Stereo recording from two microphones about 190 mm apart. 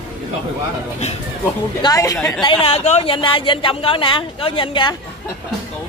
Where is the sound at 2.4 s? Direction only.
30° left (ahead or behind).